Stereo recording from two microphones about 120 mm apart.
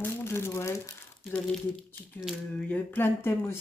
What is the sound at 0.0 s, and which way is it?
Speech, 20° left (ahead or behind).